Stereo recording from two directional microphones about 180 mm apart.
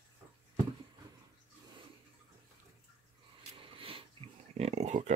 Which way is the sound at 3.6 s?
30° right (ahead or behind).